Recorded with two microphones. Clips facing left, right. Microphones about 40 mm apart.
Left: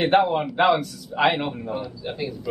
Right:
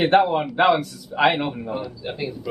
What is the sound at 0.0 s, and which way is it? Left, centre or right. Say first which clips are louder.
A man's voice: right 2 dB; centre.